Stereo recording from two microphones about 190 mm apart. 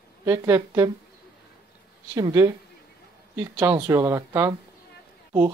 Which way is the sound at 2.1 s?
20° right (ahead or behind).